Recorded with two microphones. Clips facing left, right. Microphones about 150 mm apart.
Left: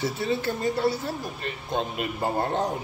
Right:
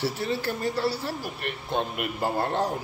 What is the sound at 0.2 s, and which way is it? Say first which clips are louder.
A man's voice: left 2 dB; 20° left (ahead or behind).